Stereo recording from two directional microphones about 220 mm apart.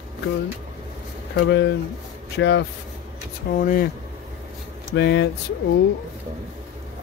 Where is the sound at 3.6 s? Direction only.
40° left (ahead or behind).